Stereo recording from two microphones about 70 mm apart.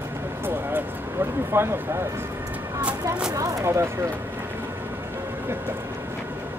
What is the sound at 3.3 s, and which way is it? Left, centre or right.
Speech, right.